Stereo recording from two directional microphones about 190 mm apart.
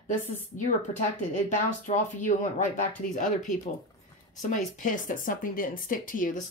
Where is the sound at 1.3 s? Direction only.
40° left (ahead or behind).